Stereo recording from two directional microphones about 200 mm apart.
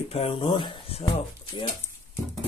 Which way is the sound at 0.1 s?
30° left (ahead or behind).